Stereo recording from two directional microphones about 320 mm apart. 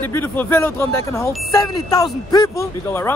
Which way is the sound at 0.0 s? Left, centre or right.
Centre.